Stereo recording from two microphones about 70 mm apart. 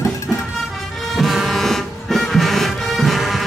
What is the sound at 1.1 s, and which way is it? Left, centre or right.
Music, centre.